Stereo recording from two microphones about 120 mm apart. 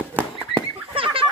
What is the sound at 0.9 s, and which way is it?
Fowl, 50° right (ahead or behind).